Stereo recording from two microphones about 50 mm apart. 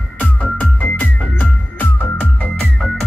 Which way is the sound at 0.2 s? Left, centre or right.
Left.